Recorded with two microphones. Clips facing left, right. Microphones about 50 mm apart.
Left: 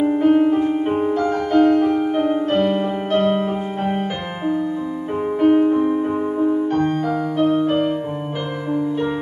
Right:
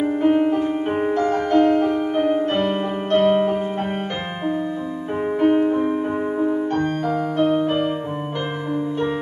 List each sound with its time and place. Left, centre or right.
0.0 s music: centre
1.2 s music: centre
2.0 s music: centre
5.4 s music: centre